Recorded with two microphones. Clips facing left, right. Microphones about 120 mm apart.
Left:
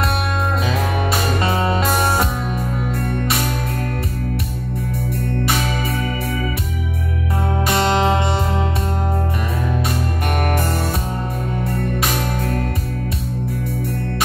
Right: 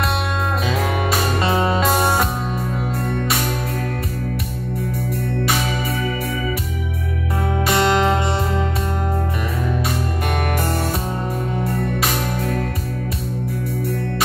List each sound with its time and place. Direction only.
7.7 s music: 35° left (ahead or behind)